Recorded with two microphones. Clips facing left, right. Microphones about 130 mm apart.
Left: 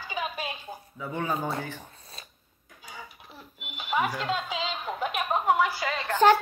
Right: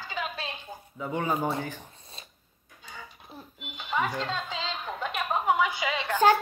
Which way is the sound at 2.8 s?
10° left (ahead or behind).